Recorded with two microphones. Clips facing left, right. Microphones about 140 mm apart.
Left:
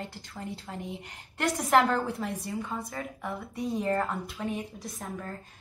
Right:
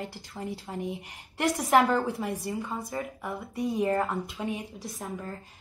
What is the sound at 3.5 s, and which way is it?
Speech, 55° right (ahead or behind).